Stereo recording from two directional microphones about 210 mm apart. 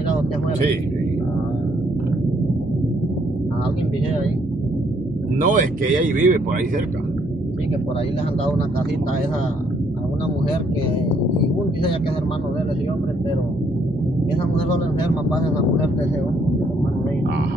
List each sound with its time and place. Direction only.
5.4 s speech: 40° right (ahead or behind)